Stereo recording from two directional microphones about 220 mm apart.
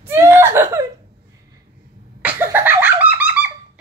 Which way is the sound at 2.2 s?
10° right (ahead or behind).